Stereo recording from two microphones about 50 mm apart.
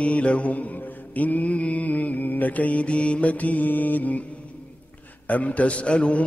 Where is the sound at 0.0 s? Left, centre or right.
Left.